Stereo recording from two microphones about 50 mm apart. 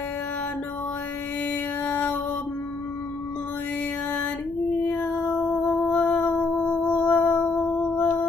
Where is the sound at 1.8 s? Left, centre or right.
Left.